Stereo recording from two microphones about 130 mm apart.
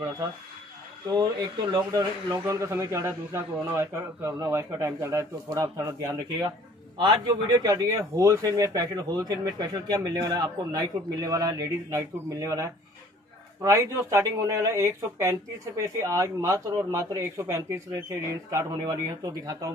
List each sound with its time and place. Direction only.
1.1 s speech: 35° right (ahead or behind)